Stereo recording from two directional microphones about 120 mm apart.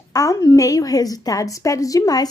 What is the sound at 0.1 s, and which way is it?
A woman's voice, 30° left (ahead or behind).